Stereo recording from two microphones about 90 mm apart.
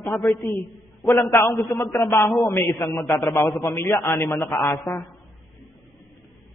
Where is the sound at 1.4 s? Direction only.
35° left (ahead or behind).